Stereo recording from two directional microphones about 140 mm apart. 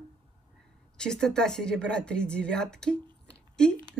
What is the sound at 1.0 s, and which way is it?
Speech, 5° left (ahead or behind).